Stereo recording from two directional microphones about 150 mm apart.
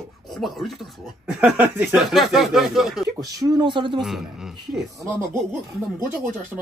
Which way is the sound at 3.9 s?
Centre (ahead or behind).